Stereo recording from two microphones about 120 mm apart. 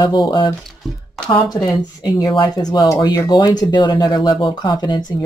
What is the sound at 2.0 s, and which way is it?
Speech, 35° left (ahead or behind).